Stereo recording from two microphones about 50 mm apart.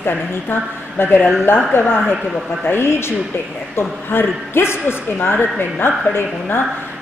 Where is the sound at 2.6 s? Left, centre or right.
Left.